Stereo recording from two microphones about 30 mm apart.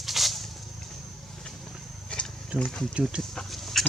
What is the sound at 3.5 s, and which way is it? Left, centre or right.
Dog, centre.